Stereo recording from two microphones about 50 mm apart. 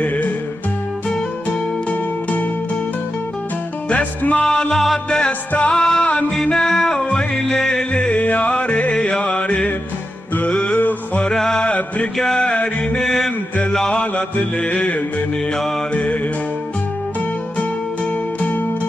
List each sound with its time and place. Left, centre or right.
0.0 s music: left
3.9 s music: left
4.5 s music: centre
4.7 s music: centre
5.5 s music: left
8.1 s music: left
10.8 s music: left
11.2 s music: centre
11.6 s music: left
13.0 s mantra: centre
13.7 s music: centre
14.1 s mantra: left
15.9 s music: left